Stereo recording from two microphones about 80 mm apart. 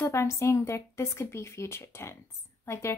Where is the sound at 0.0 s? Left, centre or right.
Left.